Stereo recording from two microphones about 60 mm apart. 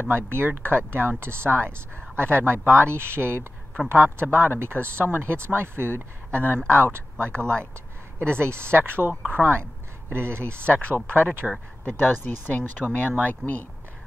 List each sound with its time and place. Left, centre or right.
0.1 s speech: right
11.8 s speech: left